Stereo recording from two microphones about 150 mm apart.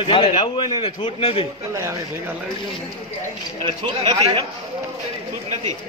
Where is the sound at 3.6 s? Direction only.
40° right (ahead or behind).